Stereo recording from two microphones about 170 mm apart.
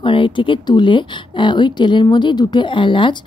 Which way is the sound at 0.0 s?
30° left (ahead or behind).